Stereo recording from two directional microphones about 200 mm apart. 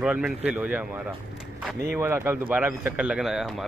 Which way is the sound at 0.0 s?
5° right (ahead or behind).